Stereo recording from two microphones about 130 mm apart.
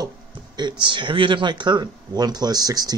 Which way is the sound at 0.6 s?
35° right (ahead or behind).